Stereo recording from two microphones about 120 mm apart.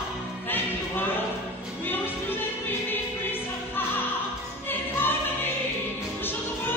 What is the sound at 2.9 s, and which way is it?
Choir, 15° left (ahead or behind).